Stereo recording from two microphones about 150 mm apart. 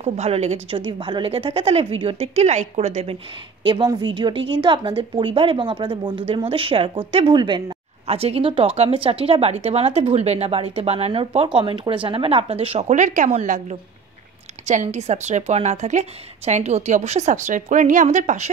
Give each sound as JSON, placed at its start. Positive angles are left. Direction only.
{"t": 0.0, "sound": "a woman's voice", "side_deg": -45}
{"t": 3.6, "sound": "a woman's voice", "side_deg": -30}